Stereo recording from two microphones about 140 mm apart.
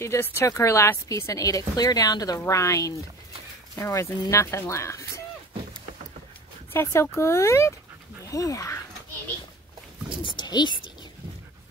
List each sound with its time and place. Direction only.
0.0 s speech: 20° left (ahead or behind)
6.7 s speech: 20° left (ahead or behind)
10.2 s speech: 30° left (ahead or behind)